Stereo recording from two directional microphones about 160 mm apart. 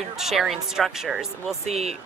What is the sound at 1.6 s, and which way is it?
Speech, 40° right (ahead or behind).